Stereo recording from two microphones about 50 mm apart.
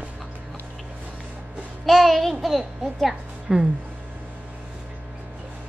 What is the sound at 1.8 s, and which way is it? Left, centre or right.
A child's voice, centre.